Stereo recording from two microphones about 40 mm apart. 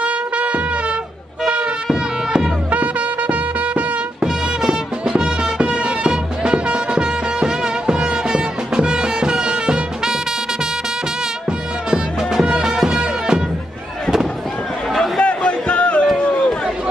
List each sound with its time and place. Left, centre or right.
0.0 s music: right
1.4 s a sound: right
1.9 s music: centre
2.7 s music: right
4.2 s music: centre
5.6 s music: right
11.9 s music: centre
15.2 s a sound: left